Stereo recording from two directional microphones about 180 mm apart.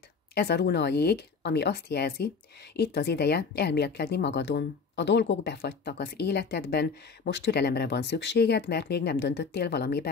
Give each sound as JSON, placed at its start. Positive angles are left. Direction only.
{"t": 0.3, "sound": "speech", "side_deg": 65}